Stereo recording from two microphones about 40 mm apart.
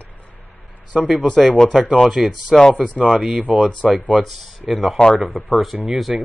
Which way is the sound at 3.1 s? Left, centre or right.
Right.